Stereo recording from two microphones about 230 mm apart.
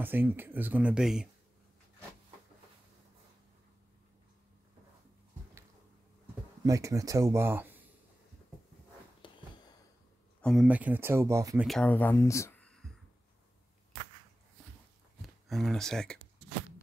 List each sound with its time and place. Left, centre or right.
0.0 s speech: centre
6.6 s speech: centre
9.2 s a sound: left
10.4 s speech: centre
11.6 s speech: centre
15.2 s speech: centre